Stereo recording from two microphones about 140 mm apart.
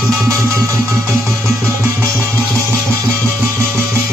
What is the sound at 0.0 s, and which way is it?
Music, 20° right (ahead or behind).